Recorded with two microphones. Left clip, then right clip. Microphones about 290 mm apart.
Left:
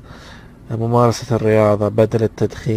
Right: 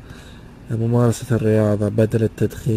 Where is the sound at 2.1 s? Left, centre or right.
Left.